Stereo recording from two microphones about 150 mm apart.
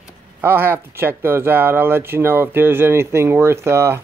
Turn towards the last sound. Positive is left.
turn(degrees=-15)  # may be behind; listen again after turning